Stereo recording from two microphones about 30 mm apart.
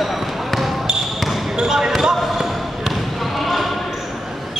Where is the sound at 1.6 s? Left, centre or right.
Right.